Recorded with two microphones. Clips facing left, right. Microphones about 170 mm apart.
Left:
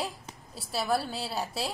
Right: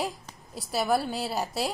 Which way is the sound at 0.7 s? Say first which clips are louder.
Right 3 dB; 15° right (ahead or behind).